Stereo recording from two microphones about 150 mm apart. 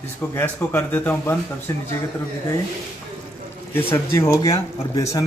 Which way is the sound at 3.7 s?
15° left (ahead or behind).